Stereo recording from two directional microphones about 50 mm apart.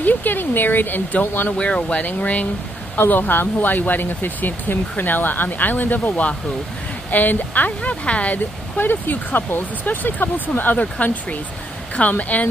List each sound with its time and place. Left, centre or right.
0.0 s speech: left
1.6 s speech: left
3.0 s speech: left
8.7 s speech: left